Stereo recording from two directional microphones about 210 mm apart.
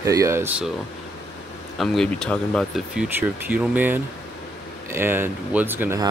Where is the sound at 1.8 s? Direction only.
5° left (ahead or behind).